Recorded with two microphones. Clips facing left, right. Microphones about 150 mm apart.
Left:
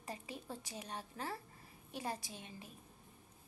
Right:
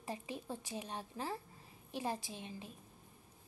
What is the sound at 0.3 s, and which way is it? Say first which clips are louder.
A woman's voice: right 4 dB; 20° right (ahead or behind).